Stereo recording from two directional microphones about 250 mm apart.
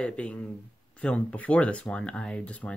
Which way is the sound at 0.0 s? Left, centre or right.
Centre.